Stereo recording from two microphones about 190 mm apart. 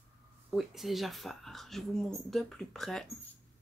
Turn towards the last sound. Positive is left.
turn(degrees=0)  # may be behind; listen again after turning